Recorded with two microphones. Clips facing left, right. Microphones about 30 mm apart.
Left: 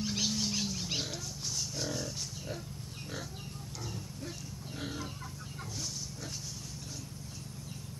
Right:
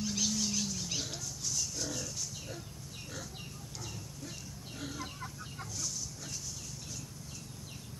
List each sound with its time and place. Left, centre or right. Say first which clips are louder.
0.0 s pig: left 1 dB; left